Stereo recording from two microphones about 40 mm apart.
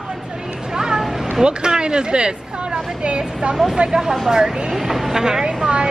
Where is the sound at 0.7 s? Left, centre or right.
Centre.